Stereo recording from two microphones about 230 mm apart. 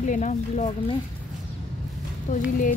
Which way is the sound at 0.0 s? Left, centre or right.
Left.